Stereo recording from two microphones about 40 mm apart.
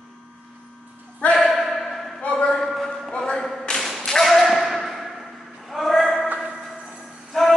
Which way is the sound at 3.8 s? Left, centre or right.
Centre.